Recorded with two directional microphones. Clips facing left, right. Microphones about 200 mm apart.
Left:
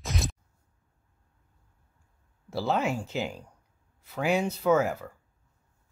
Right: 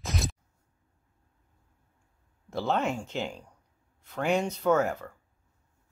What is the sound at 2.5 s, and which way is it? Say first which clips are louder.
Speech: left 1 dB; 5° left (ahead or behind).